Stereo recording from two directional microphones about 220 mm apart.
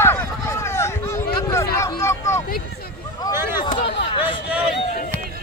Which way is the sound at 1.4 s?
15° left (ahead or behind).